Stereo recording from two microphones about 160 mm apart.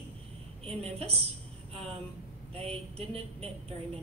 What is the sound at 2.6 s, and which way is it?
Speech, 40° right (ahead or behind).